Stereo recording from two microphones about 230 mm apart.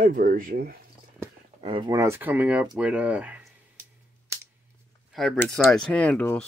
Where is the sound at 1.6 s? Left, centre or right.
Right; by 3.8 s centre.